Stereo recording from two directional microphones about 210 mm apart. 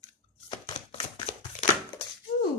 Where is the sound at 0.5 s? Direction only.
25° left (ahead or behind).